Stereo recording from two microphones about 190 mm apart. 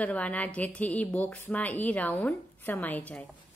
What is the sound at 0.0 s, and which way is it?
A woman's voice, 5° left (ahead or behind).